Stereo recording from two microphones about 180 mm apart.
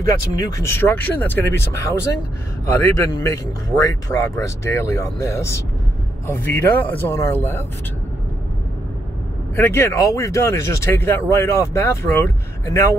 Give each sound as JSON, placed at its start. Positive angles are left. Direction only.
{"t": 0.4, "sound": "speech", "side_deg": 15}
{"t": 9.6, "sound": "speech", "side_deg": 15}